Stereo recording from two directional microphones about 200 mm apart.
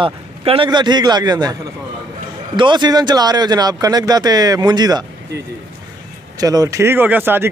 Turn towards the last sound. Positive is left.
turn(degrees=-10)  # may be behind; listen again after turning